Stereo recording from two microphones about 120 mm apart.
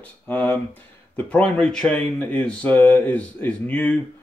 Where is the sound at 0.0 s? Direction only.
15° left (ahead or behind).